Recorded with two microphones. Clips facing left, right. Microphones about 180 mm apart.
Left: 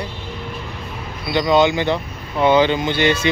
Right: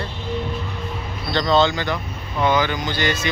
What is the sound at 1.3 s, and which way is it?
Speech, 10° left (ahead or behind).